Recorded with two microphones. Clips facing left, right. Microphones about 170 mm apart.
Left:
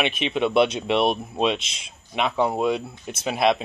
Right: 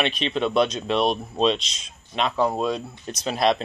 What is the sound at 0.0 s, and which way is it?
Speech, 10° left (ahead or behind).